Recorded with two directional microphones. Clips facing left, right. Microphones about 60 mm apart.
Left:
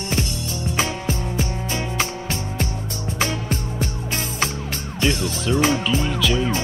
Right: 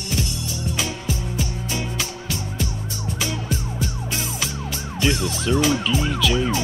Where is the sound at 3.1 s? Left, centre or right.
Left.